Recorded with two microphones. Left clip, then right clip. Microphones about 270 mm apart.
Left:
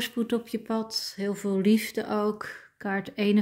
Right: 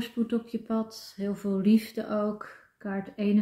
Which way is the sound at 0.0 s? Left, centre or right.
Left.